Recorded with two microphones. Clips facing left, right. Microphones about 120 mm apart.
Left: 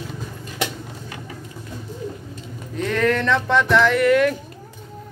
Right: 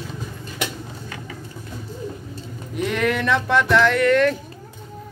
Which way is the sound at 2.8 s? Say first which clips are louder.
Left 2 dB; 10° right (ahead or behind).